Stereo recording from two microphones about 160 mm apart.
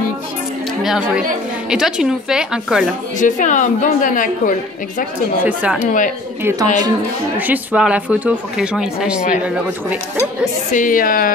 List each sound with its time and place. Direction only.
0.8 s a woman's voice: 5° right (ahead or behind)
3.2 s a woman's voice: 50° left (ahead or behind)
5.4 s speech: 10° right (ahead or behind)
5.8 s speech: 55° left (ahead or behind)
6.4 s speech: 25° right (ahead or behind)
7.3 s speech: 10° right (ahead or behind)
10.7 s speech: 55° left (ahead or behind)